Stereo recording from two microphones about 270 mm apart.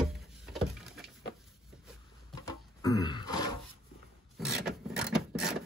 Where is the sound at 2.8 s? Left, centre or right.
Centre.